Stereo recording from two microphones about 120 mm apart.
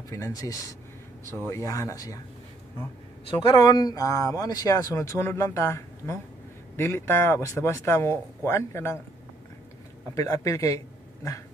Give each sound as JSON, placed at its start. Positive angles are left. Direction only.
{"t": 0.1, "sound": "speech", "side_deg": 30}
{"t": 3.3, "sound": "speech", "side_deg": 45}
{"t": 10.1, "sound": "speech", "side_deg": 25}